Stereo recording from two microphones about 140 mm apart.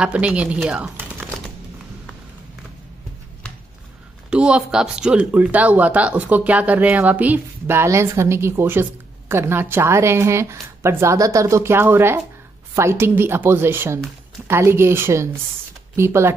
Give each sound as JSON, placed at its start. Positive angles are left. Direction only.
{"t": 0.0, "sound": "speech", "side_deg": -10}
{"t": 4.3, "sound": "speech", "side_deg": -5}